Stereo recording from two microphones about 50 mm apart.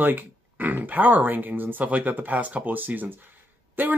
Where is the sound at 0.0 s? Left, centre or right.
Right.